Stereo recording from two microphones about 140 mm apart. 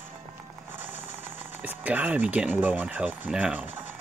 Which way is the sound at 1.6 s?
10° right (ahead or behind).